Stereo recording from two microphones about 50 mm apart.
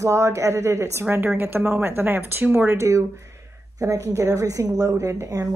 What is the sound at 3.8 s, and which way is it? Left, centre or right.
Speech, right.